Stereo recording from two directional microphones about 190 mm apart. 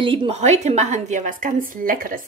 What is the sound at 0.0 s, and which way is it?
A woman's voice, 25° right (ahead or behind).